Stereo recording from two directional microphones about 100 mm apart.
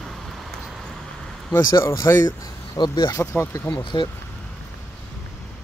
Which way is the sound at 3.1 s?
25° left (ahead or behind).